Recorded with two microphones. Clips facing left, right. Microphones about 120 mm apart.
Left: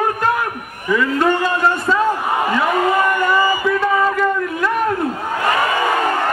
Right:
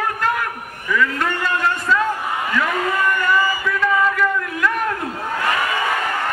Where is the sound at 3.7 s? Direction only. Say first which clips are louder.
Left 2 dB; 35° left (ahead or behind).